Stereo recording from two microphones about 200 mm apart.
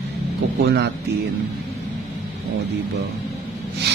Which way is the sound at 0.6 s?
55° right (ahead or behind).